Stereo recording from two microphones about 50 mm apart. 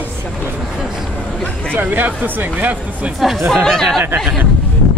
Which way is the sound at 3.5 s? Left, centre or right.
Centre.